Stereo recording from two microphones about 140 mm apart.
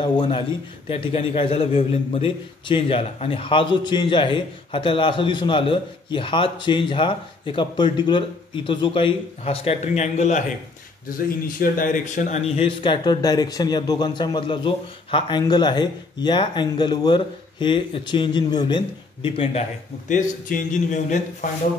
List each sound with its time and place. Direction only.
0.8 s a man's voice: 40° left (ahead or behind); by 10.4 s 60° left (ahead or behind)
11.2 s a man's voice: 85° left; by 19.6 s 40° left (ahead or behind)
20.1 s a man's voice: 75° left (ahead or behind)